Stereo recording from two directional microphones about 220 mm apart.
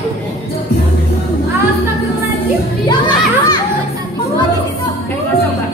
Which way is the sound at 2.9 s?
20° left (ahead or behind).